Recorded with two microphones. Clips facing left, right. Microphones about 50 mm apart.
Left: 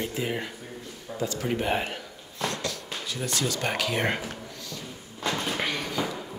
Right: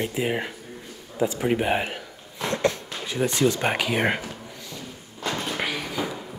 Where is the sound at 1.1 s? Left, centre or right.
Right.